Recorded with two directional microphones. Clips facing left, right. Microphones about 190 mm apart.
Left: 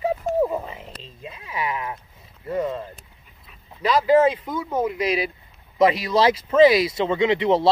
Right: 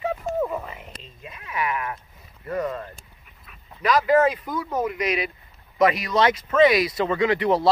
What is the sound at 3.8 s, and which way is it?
Speech, 30° left (ahead or behind).